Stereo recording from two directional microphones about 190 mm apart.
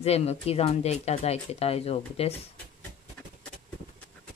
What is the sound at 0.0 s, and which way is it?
Speech, 35° left (ahead or behind).